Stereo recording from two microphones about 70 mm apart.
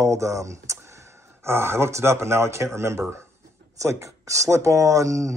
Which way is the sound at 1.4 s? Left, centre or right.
Right.